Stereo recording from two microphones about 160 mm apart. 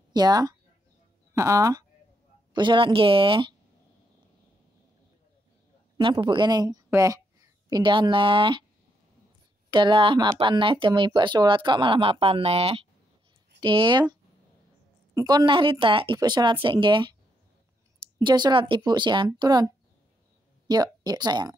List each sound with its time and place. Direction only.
0.1 s speech: 25° right (ahead or behind)
6.1 s speech: 30° right (ahead or behind)
9.7 s speech: 30° right (ahead or behind)
15.1 s speech: 25° right (ahead or behind)
18.2 s speech: 30° right (ahead or behind)